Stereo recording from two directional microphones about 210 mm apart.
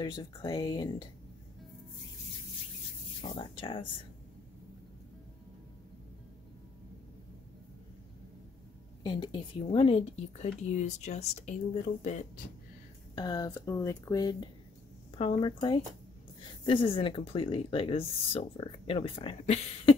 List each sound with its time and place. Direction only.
0.0 s speech: 20° left (ahead or behind)
3.2 s speech: 25° left (ahead or behind)
9.0 s speech: 20° left (ahead or behind)
13.1 s speech: 20° left (ahead or behind)